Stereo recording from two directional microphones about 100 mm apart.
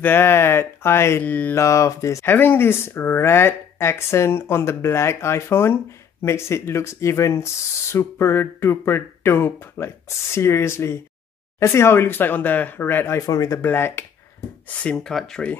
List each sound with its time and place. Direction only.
0.0 s speech: 20° left (ahead or behind)
1.6 s speech: 30° left (ahead or behind)
2.3 s speech: 20° left (ahead or behind); by 13.6 s 35° left (ahead or behind)
13.6 s speech: 20° left (ahead or behind)
15.0 s speech: 5° left (ahead or behind)